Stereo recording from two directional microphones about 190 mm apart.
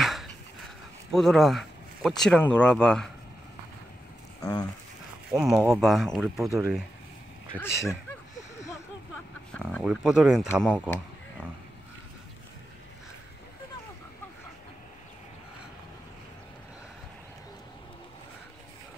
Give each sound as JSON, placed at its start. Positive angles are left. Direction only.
{"t": 0.0, "sound": "dog", "side_deg": 0}
{"t": 1.1, "sound": "speech", "side_deg": 0}
{"t": 4.4, "sound": "speech", "side_deg": 20}
{"t": 5.3, "sound": "speech", "side_deg": -5}
{"t": 7.5, "sound": "speech", "side_deg": 15}
{"t": 9.5, "sound": "speech", "side_deg": 5}
{"t": 10.5, "sound": "speech", "side_deg": 10}